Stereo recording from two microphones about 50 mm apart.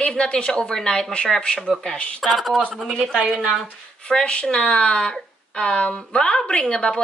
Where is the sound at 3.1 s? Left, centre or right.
Centre.